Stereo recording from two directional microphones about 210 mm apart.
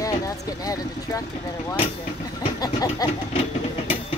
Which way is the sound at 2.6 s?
20° left (ahead or behind).